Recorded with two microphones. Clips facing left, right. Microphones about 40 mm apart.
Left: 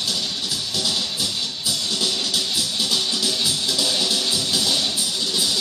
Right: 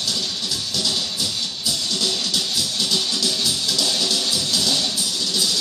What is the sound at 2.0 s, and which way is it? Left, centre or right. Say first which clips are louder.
Music: even; centre.